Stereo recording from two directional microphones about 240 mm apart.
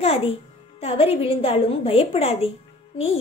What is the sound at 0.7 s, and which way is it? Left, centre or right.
A woman's voice, left.